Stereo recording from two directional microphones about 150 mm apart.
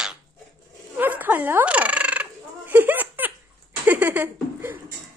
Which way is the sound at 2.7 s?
10° right (ahead or behind).